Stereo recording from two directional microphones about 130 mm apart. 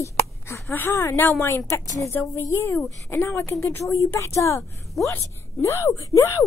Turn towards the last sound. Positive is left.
turn(degrees=25)  # may be behind; listen again after turning